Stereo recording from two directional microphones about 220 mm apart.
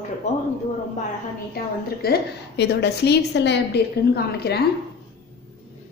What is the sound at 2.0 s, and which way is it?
A woman's voice, 45° left (ahead or behind).